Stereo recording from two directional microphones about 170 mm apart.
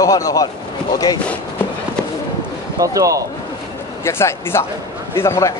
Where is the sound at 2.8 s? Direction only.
20° right (ahead or behind).